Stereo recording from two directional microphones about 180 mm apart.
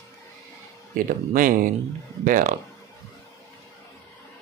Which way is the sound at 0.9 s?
50° right (ahead or behind).